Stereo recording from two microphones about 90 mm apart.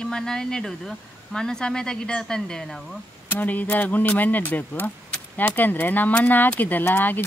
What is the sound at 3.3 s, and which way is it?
Speech, 20° left (ahead or behind).